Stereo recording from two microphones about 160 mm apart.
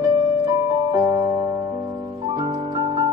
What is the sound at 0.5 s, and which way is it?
Music, 20° right (ahead or behind).